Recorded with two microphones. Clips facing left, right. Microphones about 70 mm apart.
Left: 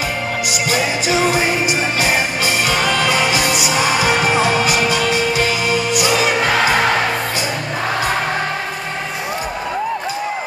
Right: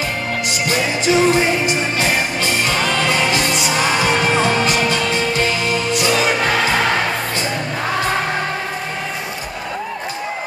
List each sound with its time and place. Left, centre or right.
0.5 s music: centre